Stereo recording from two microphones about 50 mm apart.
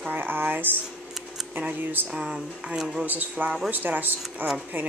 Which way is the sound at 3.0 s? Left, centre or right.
Right.